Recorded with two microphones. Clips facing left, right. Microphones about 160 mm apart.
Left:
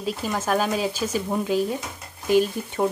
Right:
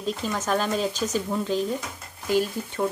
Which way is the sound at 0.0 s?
10° left (ahead or behind).